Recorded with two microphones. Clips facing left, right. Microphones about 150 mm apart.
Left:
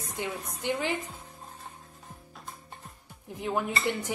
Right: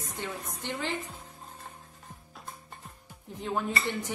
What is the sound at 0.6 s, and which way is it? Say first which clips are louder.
Dishes: left 5 dB; 15° left (ahead or behind).